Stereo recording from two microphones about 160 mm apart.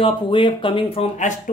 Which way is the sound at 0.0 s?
30° left (ahead or behind).